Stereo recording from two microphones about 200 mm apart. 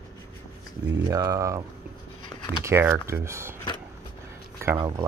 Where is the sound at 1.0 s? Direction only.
15° right (ahead or behind).